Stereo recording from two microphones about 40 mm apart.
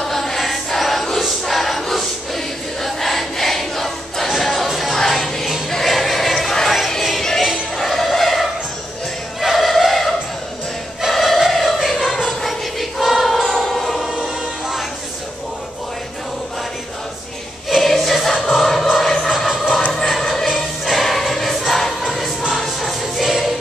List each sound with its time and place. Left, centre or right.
0.0 s choir: centre
4.3 s music: centre
7.7 s music: centre
9.4 s a sound: centre
12.3 s choir: centre
14.0 s choir: right
17.6 s choir: centre
18.5 s music: centre
22.0 s choir: centre
22.5 s music: centre